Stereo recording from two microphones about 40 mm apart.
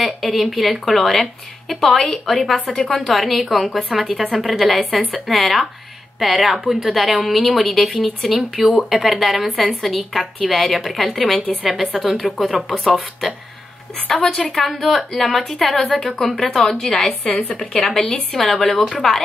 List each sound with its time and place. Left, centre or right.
0.2 s a woman's voice: centre
12.6 s speech: centre
14.0 s speech: centre
14.7 s a woman's voice: centre